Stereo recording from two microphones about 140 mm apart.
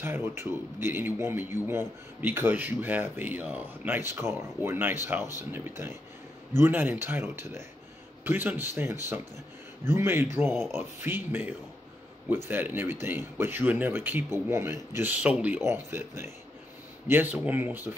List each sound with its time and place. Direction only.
0.0 s speech: 15° right (ahead or behind)